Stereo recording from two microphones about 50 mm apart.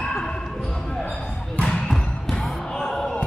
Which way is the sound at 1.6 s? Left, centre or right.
Centre.